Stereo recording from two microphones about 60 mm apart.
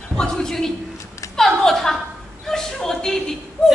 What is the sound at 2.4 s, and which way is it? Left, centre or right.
Chuckle, centre.